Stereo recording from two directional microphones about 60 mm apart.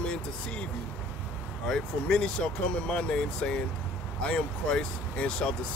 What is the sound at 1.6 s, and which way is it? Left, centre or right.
Speech, centre.